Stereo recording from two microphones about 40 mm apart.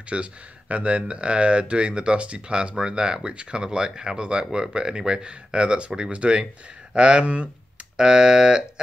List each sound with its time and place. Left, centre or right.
0.1 s speech: right; by 8.6 s centre